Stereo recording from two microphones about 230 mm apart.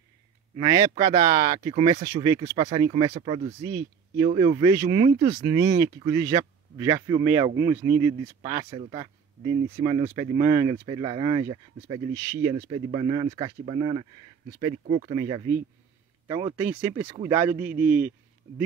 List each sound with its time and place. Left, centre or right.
0.6 s speech: centre
2.5 s speech: right
2.8 s speech: centre
3.2 s speech: right
3.6 s speech: centre
4.3 s speech: right
8.6 s speech: right; by 18.1 s centre